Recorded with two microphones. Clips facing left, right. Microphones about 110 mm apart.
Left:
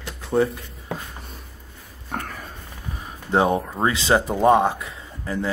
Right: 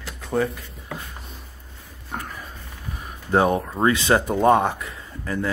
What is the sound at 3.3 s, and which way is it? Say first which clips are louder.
Speech: even; 25° left (ahead or behind).